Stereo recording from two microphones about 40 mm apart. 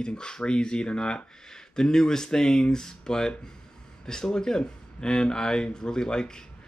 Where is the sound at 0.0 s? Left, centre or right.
Left.